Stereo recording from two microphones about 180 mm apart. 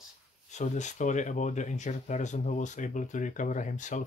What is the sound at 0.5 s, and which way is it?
Speech, 40° left (ahead or behind).